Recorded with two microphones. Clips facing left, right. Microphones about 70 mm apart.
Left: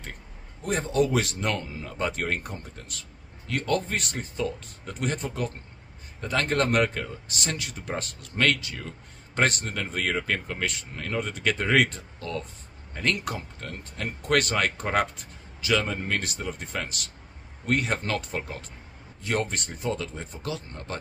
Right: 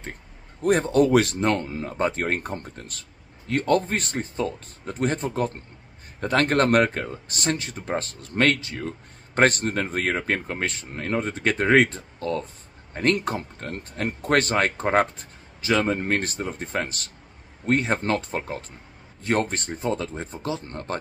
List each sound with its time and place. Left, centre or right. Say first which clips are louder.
0.6 s a man's voice: right 6 dB; right
6.2 s speech: right 5 dB; right
20.6 s a man's voice: right 5 dB; right